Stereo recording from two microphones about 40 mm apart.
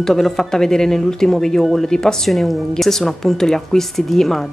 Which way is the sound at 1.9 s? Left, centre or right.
Centre.